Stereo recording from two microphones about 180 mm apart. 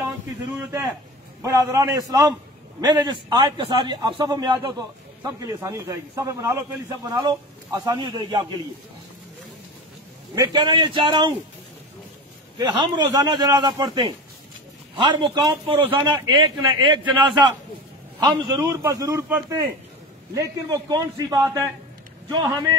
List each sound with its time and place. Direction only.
0.6 s a man's voice: 15° right (ahead or behind)
10.3 s a man's voice: 20° right (ahead or behind)
12.5 s a man's voice: 25° right (ahead or behind)